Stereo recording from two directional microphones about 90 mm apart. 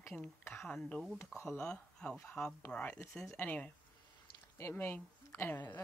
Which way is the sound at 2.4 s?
25° left (ahead or behind).